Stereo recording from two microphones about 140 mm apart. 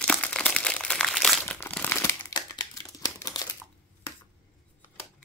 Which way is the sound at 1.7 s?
15° left (ahead or behind).